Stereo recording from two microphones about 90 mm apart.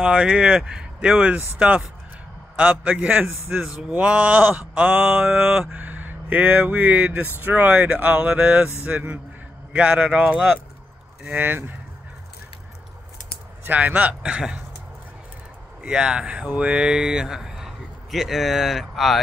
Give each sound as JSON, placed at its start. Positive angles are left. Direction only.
{"t": 0.0, "sound": "speech", "side_deg": -10}
{"t": 11.2, "sound": "speech", "side_deg": -20}
{"t": 13.7, "sound": "speech", "side_deg": -20}
{"t": 15.8, "sound": "speech", "side_deg": -10}